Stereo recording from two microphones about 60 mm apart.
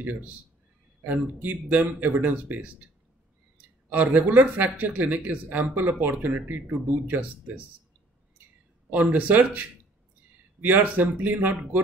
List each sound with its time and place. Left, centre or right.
1.0 s speech: right
3.9 s speech: right
8.9 s speech: right